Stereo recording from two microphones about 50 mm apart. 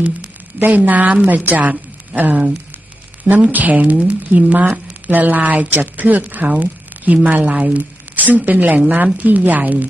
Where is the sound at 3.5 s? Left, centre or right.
Right.